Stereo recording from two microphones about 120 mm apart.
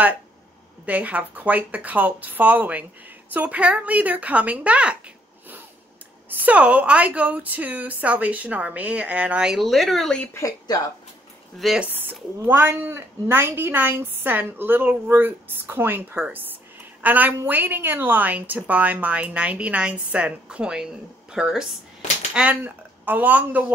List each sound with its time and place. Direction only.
0.8 s a woman's voice: 10° right (ahead or behind)
6.3 s a woman's voice: 10° right (ahead or behind); by 10.3 s 5° left (ahead or behind)
10.3 s speech: 25° left (ahead or behind)
11.6 s speech: 5° right (ahead or behind)
12.4 s a woman's voice: 20° right (ahead or behind)